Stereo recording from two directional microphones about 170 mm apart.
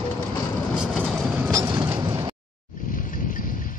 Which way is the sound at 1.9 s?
20° right (ahead or behind).